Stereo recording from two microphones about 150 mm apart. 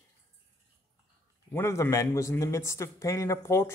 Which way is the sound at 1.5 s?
15° left (ahead or behind).